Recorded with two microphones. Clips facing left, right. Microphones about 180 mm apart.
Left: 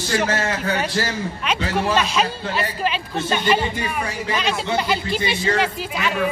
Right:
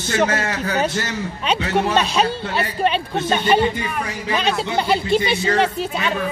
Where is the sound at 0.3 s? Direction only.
30° left (ahead or behind).